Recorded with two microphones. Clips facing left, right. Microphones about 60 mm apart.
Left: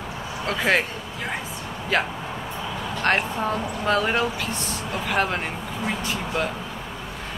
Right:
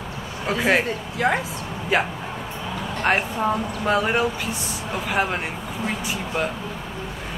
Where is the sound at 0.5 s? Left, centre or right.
Centre.